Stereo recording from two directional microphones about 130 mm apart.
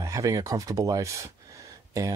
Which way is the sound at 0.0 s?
25° right (ahead or behind).